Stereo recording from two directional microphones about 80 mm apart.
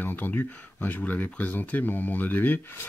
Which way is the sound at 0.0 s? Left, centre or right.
Left.